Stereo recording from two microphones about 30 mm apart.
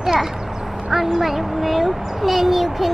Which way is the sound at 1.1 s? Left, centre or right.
Centre.